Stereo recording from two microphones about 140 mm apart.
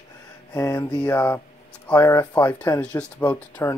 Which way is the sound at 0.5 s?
20° left (ahead or behind).